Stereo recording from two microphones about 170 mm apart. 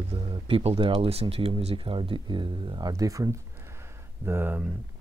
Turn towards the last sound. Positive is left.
turn(degrees=-10)  # may be behind; listen again after turning